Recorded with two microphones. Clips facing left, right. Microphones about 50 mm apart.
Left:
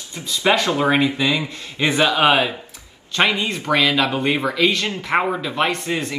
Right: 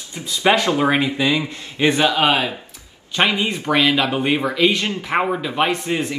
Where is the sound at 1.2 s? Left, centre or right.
Right.